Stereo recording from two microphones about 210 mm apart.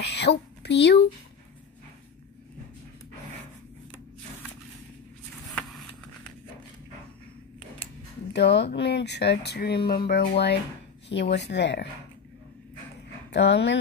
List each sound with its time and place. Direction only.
0.0 s speech: 55° left (ahead or behind)
5.5 s vehicle: 5° left (ahead or behind)
7.8 s a sound: 25° left (ahead or behind)
8.3 s speech: 55° left (ahead or behind)
13.3 s speech: 55° left (ahead or behind)